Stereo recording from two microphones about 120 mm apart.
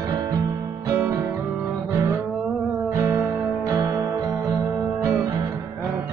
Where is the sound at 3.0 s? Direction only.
25° right (ahead or behind).